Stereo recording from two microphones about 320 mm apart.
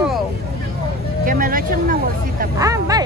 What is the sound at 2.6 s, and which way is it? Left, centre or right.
Speech, centre.